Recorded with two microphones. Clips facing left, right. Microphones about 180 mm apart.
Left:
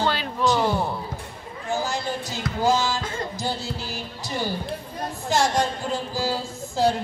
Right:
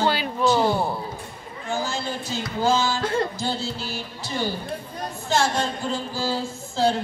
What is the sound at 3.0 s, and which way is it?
Music, 65° right (ahead or behind).